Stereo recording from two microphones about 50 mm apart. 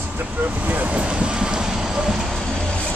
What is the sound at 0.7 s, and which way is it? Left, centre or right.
Speech, right.